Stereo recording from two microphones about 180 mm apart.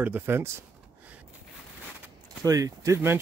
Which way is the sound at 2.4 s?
20° right (ahead or behind).